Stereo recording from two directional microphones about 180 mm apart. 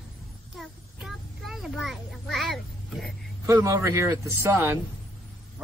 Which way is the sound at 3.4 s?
15° right (ahead or behind).